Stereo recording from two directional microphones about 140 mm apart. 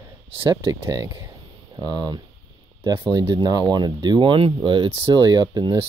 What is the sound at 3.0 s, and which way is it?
Speech, 20° right (ahead or behind).